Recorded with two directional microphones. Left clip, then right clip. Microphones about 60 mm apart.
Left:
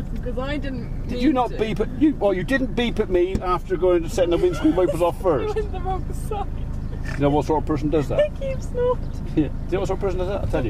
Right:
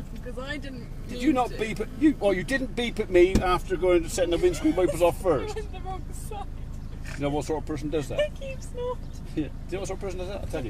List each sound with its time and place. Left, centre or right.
0.4 s speech: right
3.4 s speech: right
7.2 s speech: right
9.3 s speech: right